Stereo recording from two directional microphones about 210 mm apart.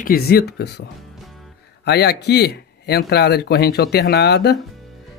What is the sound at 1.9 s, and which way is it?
Speech, 50° left (ahead or behind).